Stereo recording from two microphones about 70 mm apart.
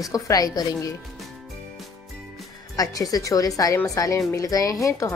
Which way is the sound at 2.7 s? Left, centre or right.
Left.